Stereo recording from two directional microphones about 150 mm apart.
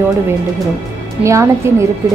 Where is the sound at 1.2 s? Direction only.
20° right (ahead or behind).